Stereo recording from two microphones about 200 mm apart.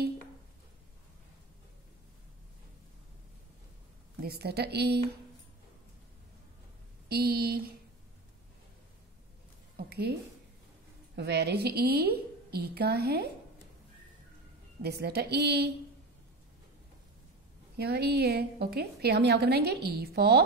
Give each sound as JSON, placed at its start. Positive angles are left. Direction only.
{"t": 4.2, "sound": "a woman's voice", "side_deg": -50}
{"t": 7.1, "sound": "a woman's voice", "side_deg": -50}
{"t": 9.8, "sound": "a sound", "side_deg": -55}
{"t": 11.1, "sound": "a woman's voice", "side_deg": -55}
{"t": 14.8, "sound": "a woman's voice", "side_deg": -55}
{"t": 17.7, "sound": "a woman's voice", "side_deg": -55}